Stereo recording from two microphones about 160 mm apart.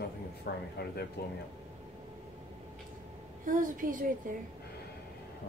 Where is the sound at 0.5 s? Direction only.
90° left.